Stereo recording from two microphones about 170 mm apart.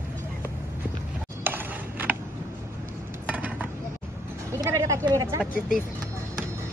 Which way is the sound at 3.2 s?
10° right (ahead or behind).